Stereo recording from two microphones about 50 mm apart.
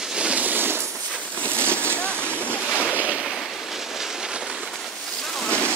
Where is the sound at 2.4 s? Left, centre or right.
Left.